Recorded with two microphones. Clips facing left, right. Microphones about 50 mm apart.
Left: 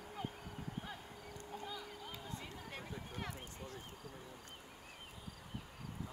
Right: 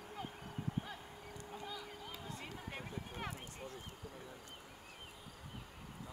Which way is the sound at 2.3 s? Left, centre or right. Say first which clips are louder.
Right 1 dB; right.